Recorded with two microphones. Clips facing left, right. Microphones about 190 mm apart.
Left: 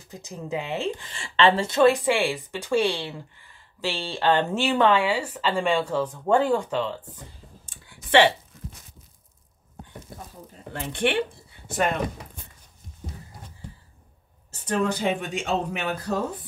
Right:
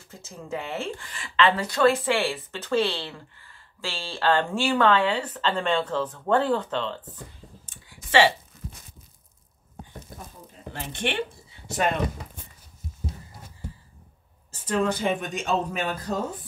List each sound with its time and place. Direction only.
0.1 s speech: 15° left (ahead or behind)
1.1 s speech: 30° left (ahead or behind); by 7.1 s 10° left (ahead or behind)
7.6 s clicking: 60° left (ahead or behind)
10.7 s speech: 55° left (ahead or behind)
15.0 s speech: 45° right (ahead or behind)
15.4 s a man's voice: 65° left (ahead or behind)